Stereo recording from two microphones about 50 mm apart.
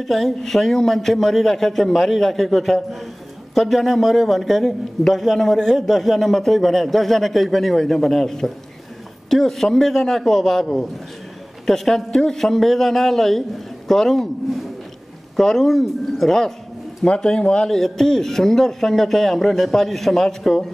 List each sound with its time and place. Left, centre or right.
0.0 s a man's voice: centre
17.6 s a man's voice: centre